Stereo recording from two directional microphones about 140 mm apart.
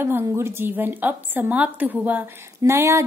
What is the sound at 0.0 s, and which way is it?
A woman's voice, 20° right (ahead or behind).